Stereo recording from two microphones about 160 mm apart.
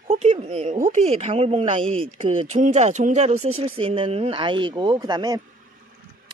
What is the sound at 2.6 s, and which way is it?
Speech, 45° right (ahead or behind).